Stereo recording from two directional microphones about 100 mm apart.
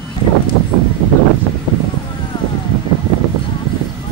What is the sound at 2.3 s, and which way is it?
Wind noise, 45° left (ahead or behind).